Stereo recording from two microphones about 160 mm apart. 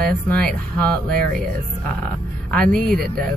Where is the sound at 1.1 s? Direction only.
70° right (ahead or behind).